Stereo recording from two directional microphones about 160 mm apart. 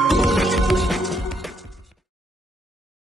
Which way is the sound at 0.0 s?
Centre (ahead or behind).